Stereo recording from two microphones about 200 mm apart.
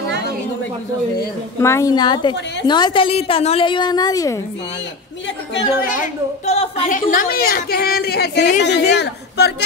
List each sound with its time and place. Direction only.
1.6 s a woman's voice: 15° left (ahead or behind)
5.5 s a woman's voice: 60° left (ahead or behind)
5.9 s a woman's voice: 35° left (ahead or behind); by 9.5 s 60° left (ahead or behind)